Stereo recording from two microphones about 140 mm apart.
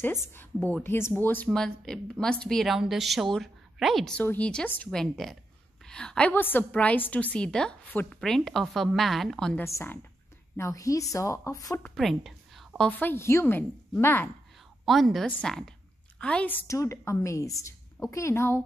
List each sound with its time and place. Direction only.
0.0 s a woman's voice: 15° left (ahead or behind)
9.6 s speech: 20° left (ahead or behind)
11.8 s a woman's voice: centre (ahead or behind)
14.9 s a woman's voice: centre (ahead or behind); by 18.6 s 20° left (ahead or behind)